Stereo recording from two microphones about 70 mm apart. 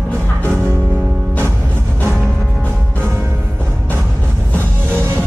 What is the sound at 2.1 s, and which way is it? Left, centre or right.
Music, centre.